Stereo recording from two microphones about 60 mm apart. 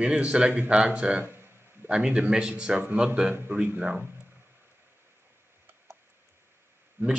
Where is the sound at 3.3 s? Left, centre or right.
Right.